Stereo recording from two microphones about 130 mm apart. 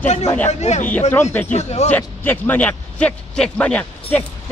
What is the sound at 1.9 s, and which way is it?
A man's voice, 15° left (ahead or behind).